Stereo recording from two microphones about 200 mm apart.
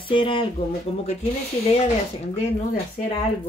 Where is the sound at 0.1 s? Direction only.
25° left (ahead or behind).